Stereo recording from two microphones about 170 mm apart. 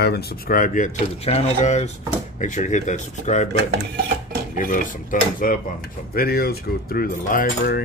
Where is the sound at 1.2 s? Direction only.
40° left (ahead or behind).